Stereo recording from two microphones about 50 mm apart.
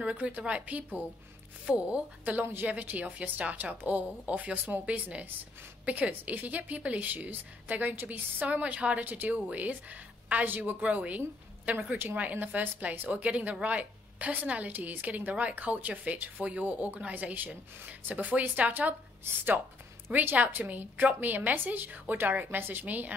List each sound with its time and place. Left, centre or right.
0.0 s a woman's voice: right
2.3 s a woman's voice: right
12.0 s a woman's voice: right
20.3 s a woman's voice: right